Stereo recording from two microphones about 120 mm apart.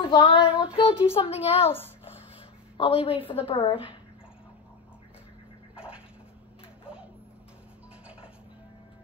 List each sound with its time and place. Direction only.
0.0 s child singing: 45° left (ahead or behind)
0.7 s a woman's voice: 50° left (ahead or behind)
2.8 s a woman's voice: 50° left (ahead or behind)